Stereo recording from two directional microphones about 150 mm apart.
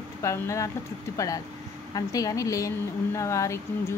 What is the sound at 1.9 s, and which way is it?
Speech, 25° left (ahead or behind).